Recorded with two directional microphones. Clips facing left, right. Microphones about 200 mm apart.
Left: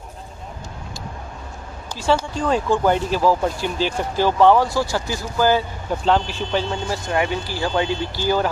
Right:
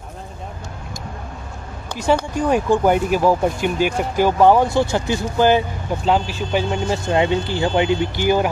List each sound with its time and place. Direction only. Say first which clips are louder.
2.3 s speech: right 3 dB; 15° right (ahead or behind)
6.0 s speech: even; 10° right (ahead or behind)